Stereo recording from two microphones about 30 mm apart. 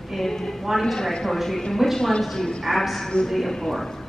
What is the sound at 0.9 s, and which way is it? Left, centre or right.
A woman's voice, centre.